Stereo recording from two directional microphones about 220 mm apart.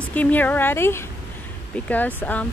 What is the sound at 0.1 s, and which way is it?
Speech, 10° left (ahead or behind).